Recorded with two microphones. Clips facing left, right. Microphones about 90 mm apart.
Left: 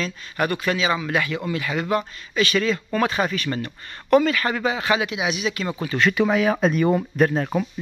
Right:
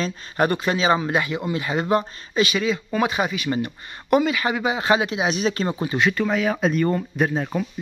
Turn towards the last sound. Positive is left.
turn(degrees=5)  # may be behind; listen again after turning